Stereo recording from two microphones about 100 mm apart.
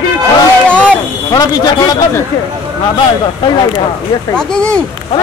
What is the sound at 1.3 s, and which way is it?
Speech, 40° left (ahead or behind).